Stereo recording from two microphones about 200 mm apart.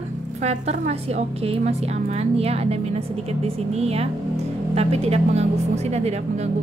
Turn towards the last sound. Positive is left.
turn(degrees=-30)  # may be behind; listen again after turning